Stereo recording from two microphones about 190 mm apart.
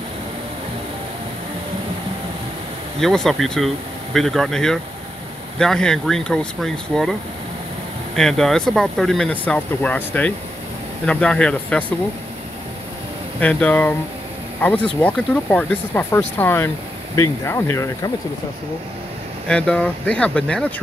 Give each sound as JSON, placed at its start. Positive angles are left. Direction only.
{"t": 3.0, "sound": "speech", "side_deg": 0}
{"t": 8.2, "sound": "speech", "side_deg": 0}
{"t": 13.4, "sound": "speech", "side_deg": 5}
{"t": 19.4, "sound": "speech", "side_deg": 5}